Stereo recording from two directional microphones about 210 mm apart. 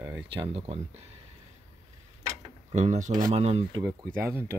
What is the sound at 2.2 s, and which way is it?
Tick-tock, 30° right (ahead or behind).